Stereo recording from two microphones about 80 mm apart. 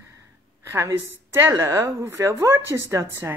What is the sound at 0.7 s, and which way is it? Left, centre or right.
A woman's voice, right.